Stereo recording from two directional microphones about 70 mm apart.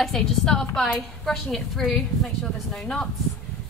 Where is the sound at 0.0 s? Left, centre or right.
Centre.